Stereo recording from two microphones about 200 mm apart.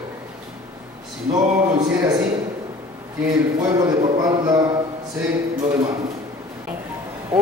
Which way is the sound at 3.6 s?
20° right (ahead or behind).